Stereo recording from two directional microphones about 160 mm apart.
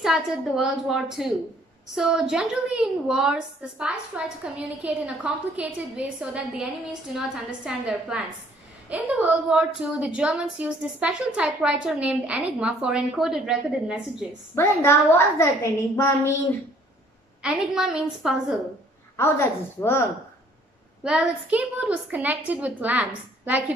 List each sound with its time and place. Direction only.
0.0 s a woman's voice: centre (ahead or behind)
14.5 s a woman's voice: 15° left (ahead or behind)
17.4 s a woman's voice: 5° right (ahead or behind)
19.1 s a woman's voice: 15° left (ahead or behind)
21.0 s a woman's voice: 5° right (ahead or behind)